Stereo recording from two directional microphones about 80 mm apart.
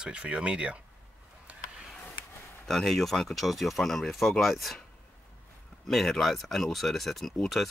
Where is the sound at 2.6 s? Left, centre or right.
Centre.